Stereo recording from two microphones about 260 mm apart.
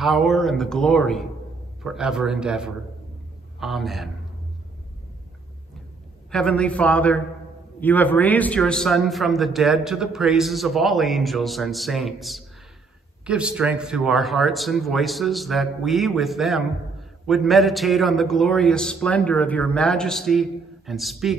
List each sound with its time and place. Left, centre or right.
0.0 s a man's voice: centre
6.3 s a man's voice: centre